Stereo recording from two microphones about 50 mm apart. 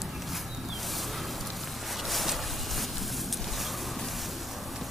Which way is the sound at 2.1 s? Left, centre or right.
Centre.